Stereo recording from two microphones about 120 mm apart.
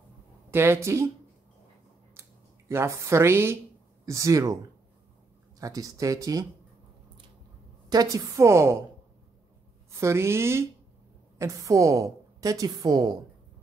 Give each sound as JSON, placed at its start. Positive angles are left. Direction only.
{"t": 0.5, "sound": "a woman's voice", "side_deg": -20}
{"t": 2.2, "sound": "a sound", "side_deg": -20}
{"t": 2.7, "sound": "a woman's voice", "side_deg": -20}
{"t": 5.6, "sound": "a woman's voice", "side_deg": -30}
{"t": 7.9, "sound": "a woman's voice", "side_deg": -30}
{"t": 9.8, "sound": "a woman's voice", "side_deg": -25}